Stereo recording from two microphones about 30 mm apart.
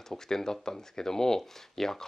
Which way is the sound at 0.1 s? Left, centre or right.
Centre.